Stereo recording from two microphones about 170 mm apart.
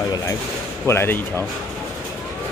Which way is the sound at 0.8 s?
15° left (ahead or behind).